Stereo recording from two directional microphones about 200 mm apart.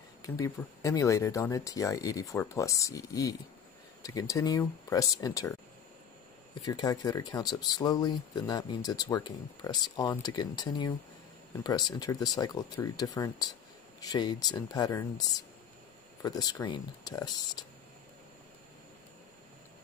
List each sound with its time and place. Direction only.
0.2 s speech: 15° left (ahead or behind)
6.6 s speech: 20° left (ahead or behind)